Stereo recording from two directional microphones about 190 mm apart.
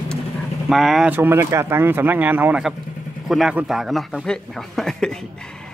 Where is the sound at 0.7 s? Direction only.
Centre (ahead or behind).